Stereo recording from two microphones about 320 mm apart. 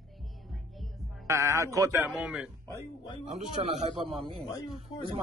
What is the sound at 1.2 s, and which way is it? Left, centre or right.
Speech, centre.